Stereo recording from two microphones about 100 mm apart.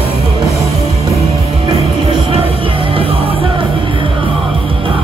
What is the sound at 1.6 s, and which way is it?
Music, 90° left.